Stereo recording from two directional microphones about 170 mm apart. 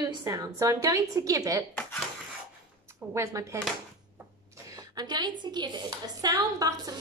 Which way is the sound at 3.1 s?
20° right (ahead or behind).